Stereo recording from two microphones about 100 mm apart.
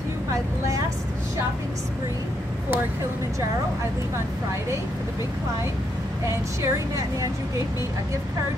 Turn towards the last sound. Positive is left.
turn(degrees=-30)  # may be behind; listen again after turning